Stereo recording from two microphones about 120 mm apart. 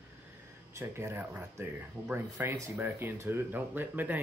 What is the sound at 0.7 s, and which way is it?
Speech, 20° right (ahead or behind).